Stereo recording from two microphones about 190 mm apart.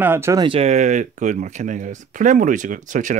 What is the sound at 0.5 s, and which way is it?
Speech, 35° right (ahead or behind).